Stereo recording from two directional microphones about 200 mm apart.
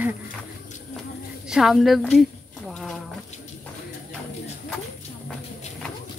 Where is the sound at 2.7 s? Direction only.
Centre (ahead or behind).